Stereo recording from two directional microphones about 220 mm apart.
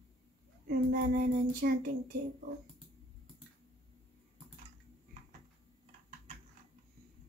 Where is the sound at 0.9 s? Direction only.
40° right (ahead or behind).